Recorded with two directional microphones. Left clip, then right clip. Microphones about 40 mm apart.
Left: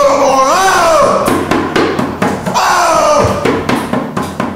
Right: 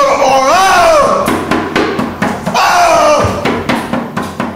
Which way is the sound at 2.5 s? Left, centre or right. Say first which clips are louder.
Right 2 dB; centre.